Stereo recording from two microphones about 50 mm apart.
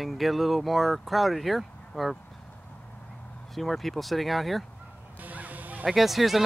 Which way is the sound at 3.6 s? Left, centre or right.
Centre.